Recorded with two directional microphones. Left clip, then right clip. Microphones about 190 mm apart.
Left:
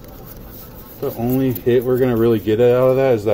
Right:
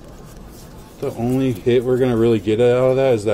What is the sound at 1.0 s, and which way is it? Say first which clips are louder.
Speech: left 1 dB; centre (ahead or behind).